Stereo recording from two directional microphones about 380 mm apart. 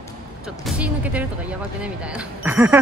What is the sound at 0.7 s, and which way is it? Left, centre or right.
Speech, centre.